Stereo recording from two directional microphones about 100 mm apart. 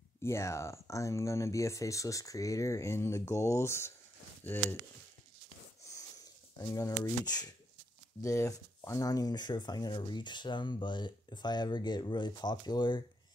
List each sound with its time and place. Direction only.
0.2 s speech: 30° left (ahead or behind)
5.8 s a sound: 30° left (ahead or behind)
6.6 s speech: 35° left (ahead or behind)